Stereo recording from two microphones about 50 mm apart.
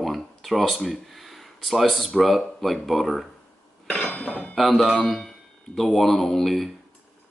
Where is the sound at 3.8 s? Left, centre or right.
Left.